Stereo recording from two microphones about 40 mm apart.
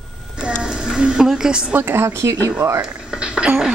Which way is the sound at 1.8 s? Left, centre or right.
Right.